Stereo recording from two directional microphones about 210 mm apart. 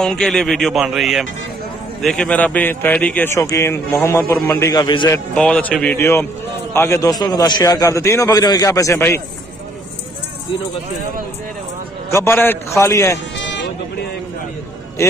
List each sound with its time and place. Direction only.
0.0 s speech: centre (ahead or behind); by 5.2 s 20° left (ahead or behind)
5.3 s speech: 5° left (ahead or behind)
12.1 s speech: 10° left (ahead or behind)
13.4 s music: 60° left (ahead or behind)
15.0 s speech: 15° left (ahead or behind)